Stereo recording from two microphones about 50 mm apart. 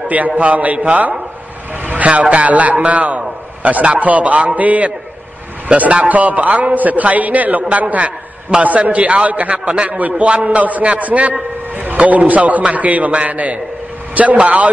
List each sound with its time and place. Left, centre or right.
0.4 s a man's voice: right